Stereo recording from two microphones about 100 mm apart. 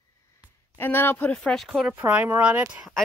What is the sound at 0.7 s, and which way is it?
Speech, 20° left (ahead or behind).